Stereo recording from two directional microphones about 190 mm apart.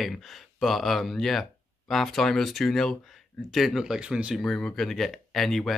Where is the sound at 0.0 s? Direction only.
Centre (ahead or behind).